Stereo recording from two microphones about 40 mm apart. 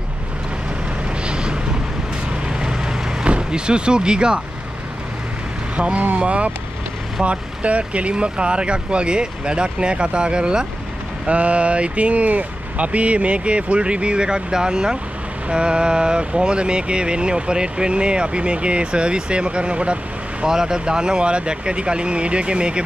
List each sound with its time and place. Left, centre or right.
1.2 s vehicle: right
3.3 s speech: right
5.8 s speech: right
11.2 s speech: right
20.4 s speech: centre